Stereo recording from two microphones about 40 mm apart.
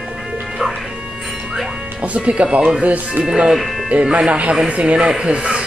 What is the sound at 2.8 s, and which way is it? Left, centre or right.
Speech, right.